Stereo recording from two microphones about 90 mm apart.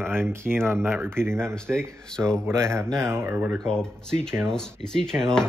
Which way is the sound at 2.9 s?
30° right (ahead or behind).